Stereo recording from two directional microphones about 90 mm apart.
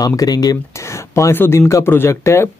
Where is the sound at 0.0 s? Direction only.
45° left (ahead or behind).